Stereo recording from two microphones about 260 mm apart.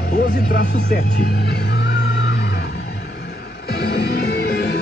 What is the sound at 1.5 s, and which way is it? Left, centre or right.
Music, left.